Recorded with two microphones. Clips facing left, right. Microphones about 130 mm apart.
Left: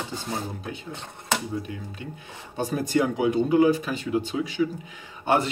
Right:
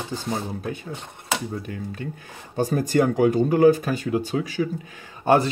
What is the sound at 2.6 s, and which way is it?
Speech, 45° right (ahead or behind).